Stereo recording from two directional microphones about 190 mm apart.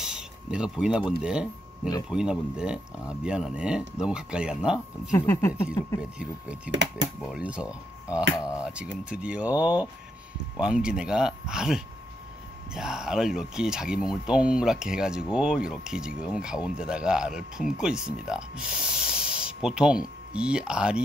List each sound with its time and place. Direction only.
0.0 s a sound: 5° right (ahead or behind)
1.2 s speech: 5° right (ahead or behind)
5.1 s speech: 15° left (ahead or behind)
6.1 s speech: 5° right (ahead or behind)
6.7 s speech: 75° right (ahead or behind)
7.2 s speech: 5° right (ahead or behind)
8.4 s speech: 15° left (ahead or behind)
8.6 s speech: 5° right (ahead or behind)
18.9 s spray: 5° right (ahead or behind)
20.3 s speech: 5° right (ahead or behind)